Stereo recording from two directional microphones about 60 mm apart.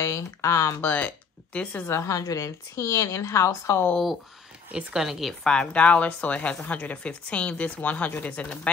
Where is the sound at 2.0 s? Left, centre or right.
Left.